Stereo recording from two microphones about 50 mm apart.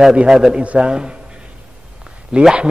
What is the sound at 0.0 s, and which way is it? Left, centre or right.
Speech, centre.